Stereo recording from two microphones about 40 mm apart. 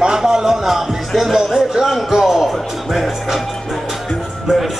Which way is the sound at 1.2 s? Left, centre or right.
Centre.